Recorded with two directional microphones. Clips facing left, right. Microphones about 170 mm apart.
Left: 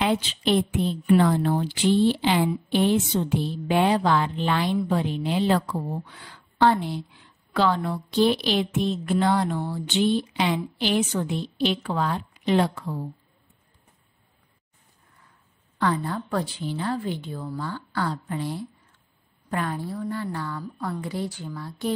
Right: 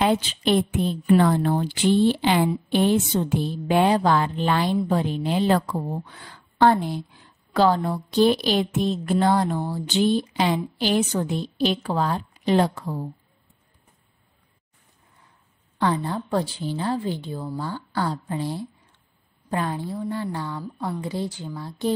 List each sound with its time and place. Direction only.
0.0 s a woman's voice: 45° right (ahead or behind)
15.8 s a woman's voice: 25° right (ahead or behind)